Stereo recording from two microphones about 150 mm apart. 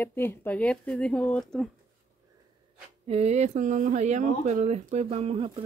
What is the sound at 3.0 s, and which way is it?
Speech, 45° right (ahead or behind).